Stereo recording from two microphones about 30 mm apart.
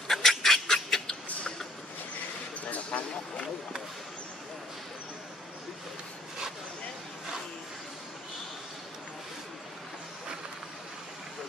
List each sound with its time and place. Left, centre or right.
0.1 s fowl: centre
0.7 s bird: centre
2.9 s a sound: left